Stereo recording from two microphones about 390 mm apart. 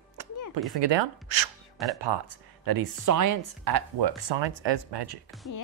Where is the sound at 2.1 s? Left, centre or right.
Right.